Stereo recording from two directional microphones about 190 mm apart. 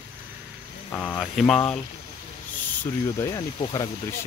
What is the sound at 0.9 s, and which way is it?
Speech, 5° left (ahead or behind).